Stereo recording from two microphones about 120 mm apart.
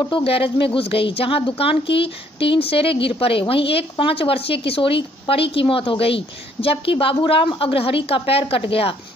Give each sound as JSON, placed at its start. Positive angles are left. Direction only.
{"t": 0.1, "sound": "speech", "side_deg": 50}